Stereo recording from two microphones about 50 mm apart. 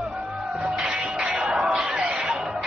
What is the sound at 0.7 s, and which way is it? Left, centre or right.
Music, centre.